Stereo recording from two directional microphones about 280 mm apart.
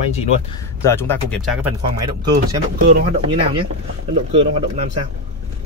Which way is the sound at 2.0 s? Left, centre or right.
Centre.